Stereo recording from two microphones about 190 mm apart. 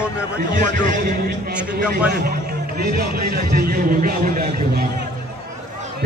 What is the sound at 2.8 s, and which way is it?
Speech, 55° right (ahead or behind).